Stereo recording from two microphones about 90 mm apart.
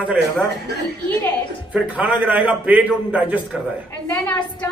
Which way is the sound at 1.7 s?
15° right (ahead or behind).